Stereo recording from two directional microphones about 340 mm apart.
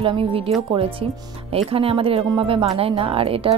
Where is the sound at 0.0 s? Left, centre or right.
Centre.